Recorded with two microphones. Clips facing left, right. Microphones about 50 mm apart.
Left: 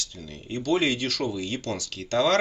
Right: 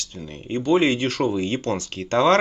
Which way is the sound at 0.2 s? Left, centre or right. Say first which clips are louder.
Right 7 dB; right.